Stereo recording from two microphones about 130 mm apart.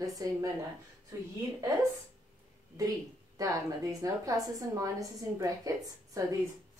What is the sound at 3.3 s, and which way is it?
A woman's voice, 25° right (ahead or behind).